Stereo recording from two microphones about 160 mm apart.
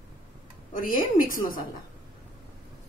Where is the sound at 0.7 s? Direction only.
60° left (ahead or behind).